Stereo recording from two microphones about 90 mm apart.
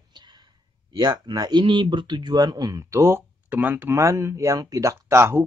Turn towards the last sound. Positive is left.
turn(degrees=-30)  # may be behind; listen again after turning